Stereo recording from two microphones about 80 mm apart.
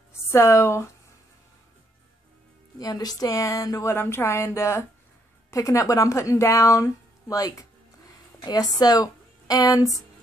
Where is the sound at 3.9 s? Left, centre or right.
Left.